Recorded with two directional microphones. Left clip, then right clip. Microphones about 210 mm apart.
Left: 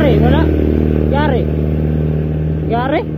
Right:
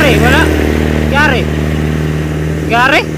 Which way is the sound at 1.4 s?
40° left (ahead or behind).